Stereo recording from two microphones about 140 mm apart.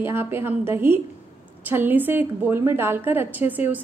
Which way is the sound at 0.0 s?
15° right (ahead or behind).